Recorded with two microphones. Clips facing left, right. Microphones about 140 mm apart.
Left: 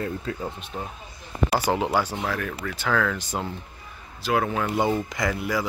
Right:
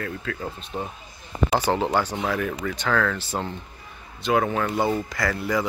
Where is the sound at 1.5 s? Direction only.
10° left (ahead or behind).